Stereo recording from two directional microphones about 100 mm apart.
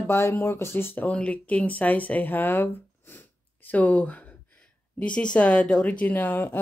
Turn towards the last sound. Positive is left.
turn(degrees=20)  # may be behind; listen again after turning